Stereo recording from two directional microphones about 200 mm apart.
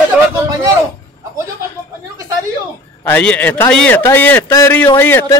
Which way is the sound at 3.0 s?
10° left (ahead or behind).